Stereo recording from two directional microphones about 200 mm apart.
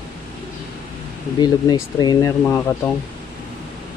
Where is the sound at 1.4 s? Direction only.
20° left (ahead or behind).